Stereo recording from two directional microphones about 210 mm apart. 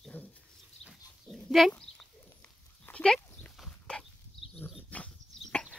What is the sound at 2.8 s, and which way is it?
Dog, 5° left (ahead or behind).